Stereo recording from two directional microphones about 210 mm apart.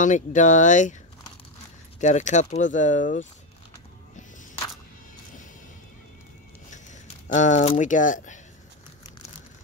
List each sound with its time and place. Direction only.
0.0 s speech: 35° left (ahead or behind)
2.0 s speech: 35° left (ahead or behind)
6.7 s speech: 35° left (ahead or behind)